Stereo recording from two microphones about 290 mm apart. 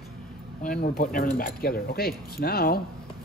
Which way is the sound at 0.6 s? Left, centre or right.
Left.